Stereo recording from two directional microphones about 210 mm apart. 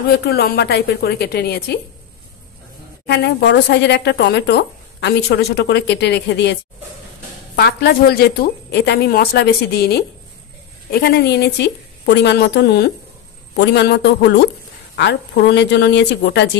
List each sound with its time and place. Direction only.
0.1 s speech: 50° left (ahead or behind)
3.1 s speech: 55° left (ahead or behind)
7.5 s speech: 50° left (ahead or behind)